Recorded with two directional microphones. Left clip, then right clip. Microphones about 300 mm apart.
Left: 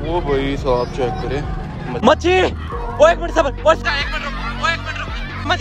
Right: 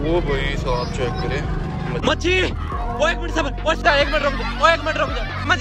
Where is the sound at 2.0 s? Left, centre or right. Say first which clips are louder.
Left 6 dB; centre.